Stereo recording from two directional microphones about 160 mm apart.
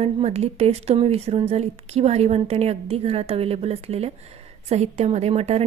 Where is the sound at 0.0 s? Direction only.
40° right (ahead or behind).